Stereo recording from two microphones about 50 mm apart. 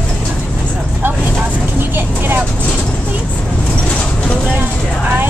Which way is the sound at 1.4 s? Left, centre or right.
Right.